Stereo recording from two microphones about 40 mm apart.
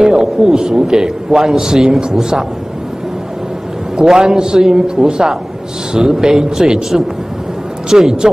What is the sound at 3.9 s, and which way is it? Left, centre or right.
A man's voice, centre.